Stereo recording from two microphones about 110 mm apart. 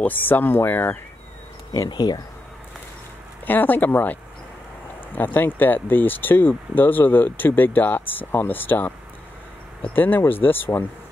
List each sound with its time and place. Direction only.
0.0 s speech: 15° left (ahead or behind)
1.7 s speech: 35° left (ahead or behind)
3.4 s speech: 15° left (ahead or behind)